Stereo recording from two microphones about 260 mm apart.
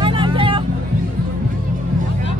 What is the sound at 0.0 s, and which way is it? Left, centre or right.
Vehicle, centre.